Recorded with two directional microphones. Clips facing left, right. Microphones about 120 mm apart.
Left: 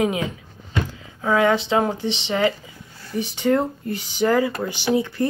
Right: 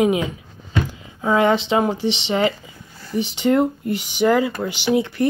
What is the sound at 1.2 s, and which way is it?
Speech, 20° right (ahead or behind).